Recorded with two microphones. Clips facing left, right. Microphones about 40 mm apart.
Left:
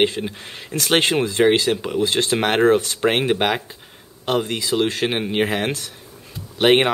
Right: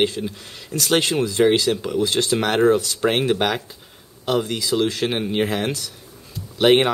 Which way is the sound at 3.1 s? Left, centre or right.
Centre.